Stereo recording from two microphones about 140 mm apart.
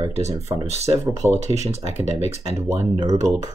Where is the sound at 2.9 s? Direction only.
25° right (ahead or behind).